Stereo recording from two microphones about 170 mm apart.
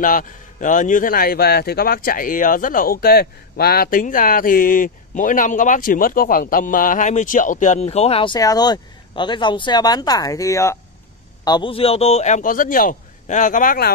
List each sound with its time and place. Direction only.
0.0 s a man's voice: 55° left (ahead or behind); by 10.8 s 20° left (ahead or behind)
11.4 s a man's voice: 30° left (ahead or behind); by 13.9 s 60° left (ahead or behind)